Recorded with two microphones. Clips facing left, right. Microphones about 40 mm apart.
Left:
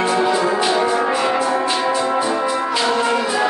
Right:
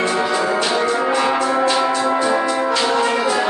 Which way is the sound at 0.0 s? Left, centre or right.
Centre.